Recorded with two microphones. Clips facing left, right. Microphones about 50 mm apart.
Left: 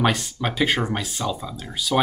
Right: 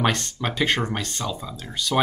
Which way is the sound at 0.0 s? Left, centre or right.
Centre.